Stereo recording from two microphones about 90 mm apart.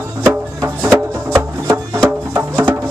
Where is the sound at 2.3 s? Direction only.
20° right (ahead or behind).